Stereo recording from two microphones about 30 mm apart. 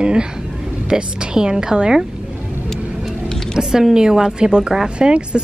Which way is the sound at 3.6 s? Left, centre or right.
Right.